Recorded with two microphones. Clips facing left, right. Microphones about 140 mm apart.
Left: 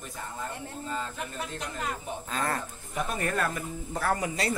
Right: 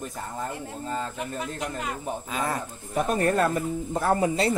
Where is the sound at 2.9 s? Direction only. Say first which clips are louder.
Right 7 dB; 40° right (ahead or behind).